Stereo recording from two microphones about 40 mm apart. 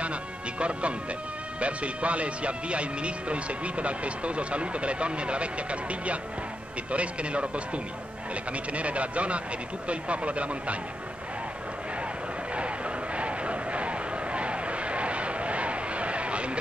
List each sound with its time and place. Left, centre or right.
0.0 s music: right
1.6 s speech: right
12.5 s a sound: right